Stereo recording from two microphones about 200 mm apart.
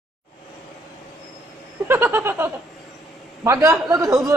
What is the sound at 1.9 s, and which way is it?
A man's voice, 10° right (ahead or behind).